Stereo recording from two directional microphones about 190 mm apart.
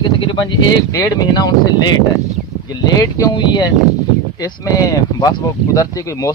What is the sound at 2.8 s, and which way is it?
Speech, 20° left (ahead or behind).